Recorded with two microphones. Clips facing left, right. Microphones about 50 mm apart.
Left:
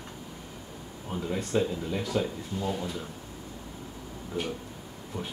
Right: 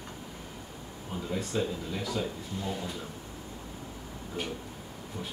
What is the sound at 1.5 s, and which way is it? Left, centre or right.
Speech, left.